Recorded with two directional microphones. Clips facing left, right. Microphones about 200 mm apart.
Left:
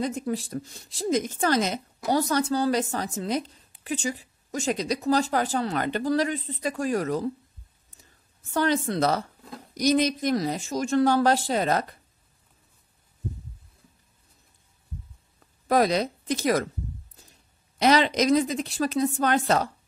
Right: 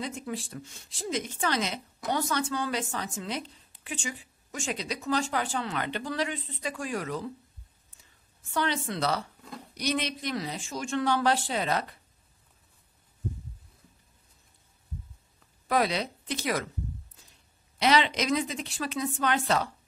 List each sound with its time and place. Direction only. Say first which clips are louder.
0.0 s speech: left 7 dB; 40° left (ahead or behind)
8.5 s a woman's voice: left 6 dB; 45° left (ahead or behind)
15.7 s a woman's voice: left 5 dB; 45° left (ahead or behind)
17.7 s speech: left 4 dB; 45° left (ahead or behind)